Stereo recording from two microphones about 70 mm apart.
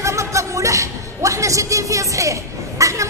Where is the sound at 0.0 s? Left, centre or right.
Right.